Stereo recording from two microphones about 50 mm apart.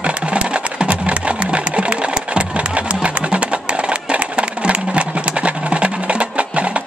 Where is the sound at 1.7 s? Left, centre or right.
Right.